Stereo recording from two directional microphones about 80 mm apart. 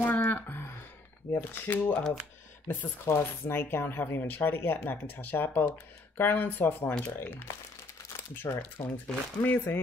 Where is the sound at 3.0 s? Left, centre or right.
Left.